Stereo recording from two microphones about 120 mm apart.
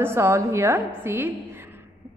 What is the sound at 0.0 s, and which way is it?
A woman's voice, 20° right (ahead or behind).